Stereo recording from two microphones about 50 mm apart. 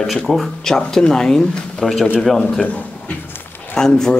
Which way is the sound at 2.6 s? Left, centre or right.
Left.